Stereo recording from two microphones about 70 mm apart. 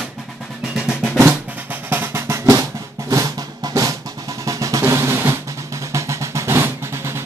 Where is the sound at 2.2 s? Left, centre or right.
Right.